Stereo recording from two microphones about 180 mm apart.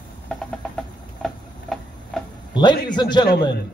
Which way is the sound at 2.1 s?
5° left (ahead or behind).